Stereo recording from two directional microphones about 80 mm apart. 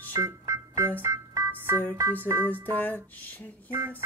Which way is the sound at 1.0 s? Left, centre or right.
Right.